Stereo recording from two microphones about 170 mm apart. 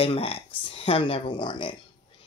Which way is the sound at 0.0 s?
35° left (ahead or behind).